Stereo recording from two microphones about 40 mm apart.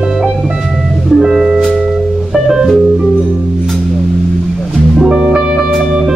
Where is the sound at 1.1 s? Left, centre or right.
Centre.